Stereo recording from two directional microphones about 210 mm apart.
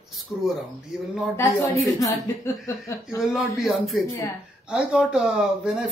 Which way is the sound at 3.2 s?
Centre (ahead or behind).